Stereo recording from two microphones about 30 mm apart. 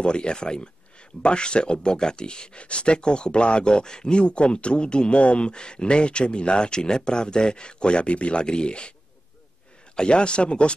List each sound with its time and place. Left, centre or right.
0.0 s speech: left
4.2 s speech: left
9.9 s speech: left